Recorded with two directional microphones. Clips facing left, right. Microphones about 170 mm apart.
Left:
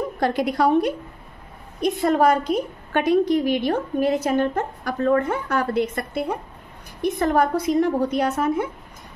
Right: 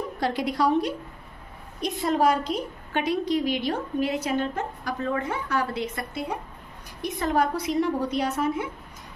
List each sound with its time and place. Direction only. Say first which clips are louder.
0.2 s a woman's voice: left 4 dB; 50° left (ahead or behind)